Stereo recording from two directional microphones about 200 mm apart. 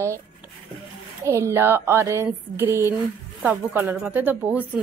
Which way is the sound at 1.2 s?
15° right (ahead or behind).